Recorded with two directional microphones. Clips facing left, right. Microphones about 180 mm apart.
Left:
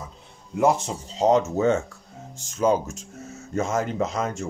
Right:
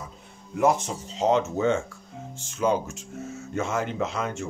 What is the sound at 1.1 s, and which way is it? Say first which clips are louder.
Speech: left 3 dB; 40° left (ahead or behind).